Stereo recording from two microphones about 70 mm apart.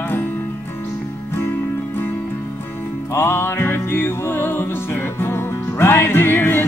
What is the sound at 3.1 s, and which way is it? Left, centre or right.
Music, left.